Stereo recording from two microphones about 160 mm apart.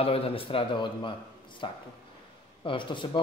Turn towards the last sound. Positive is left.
turn(degrees=30)  # may be behind; listen again after turning